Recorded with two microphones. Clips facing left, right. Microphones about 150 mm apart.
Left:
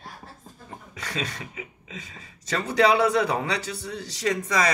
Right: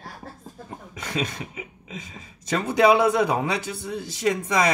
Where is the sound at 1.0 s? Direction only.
15° right (ahead or behind).